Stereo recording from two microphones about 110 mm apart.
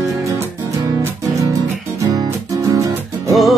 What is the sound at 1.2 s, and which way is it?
Music, 30° right (ahead or behind).